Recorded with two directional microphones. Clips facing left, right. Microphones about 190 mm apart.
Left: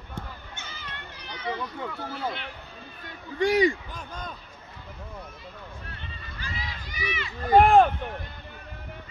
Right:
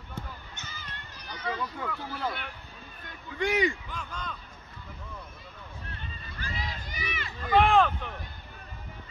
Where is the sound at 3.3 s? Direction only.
35° left (ahead or behind).